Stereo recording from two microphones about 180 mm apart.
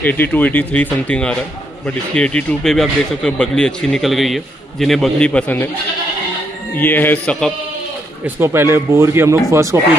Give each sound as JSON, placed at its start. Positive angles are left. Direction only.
{"t": 0.0, "sound": "speech", "side_deg": 10}
{"t": 6.8, "sound": "speech", "side_deg": 10}
{"t": 8.4, "sound": "speech", "side_deg": -15}